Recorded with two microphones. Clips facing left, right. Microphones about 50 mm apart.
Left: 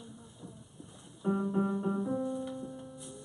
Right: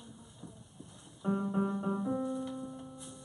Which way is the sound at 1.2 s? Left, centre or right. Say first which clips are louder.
Left 2 dB; centre.